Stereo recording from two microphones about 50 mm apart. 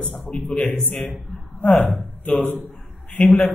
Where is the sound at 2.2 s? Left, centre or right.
Left.